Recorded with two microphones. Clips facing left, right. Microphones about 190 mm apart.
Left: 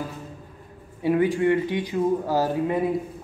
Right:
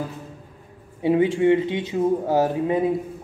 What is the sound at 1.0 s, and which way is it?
A man's voice, 20° right (ahead or behind).